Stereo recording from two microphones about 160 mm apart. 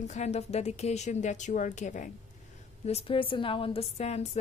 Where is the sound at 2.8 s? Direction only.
40° left (ahead or behind).